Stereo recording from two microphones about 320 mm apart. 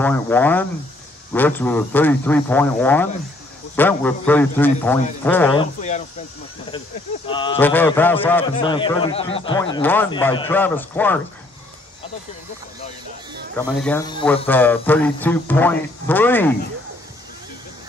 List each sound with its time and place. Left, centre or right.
0.0 s speech: centre
5.8 s speech: left
7.2 s a man's voice: centre
13.6 s a man's voice: centre